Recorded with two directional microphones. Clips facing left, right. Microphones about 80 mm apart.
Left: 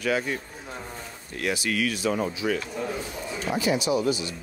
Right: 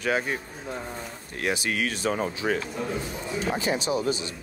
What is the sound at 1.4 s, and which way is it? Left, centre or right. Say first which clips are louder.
A man's voice: left 1 dB; right.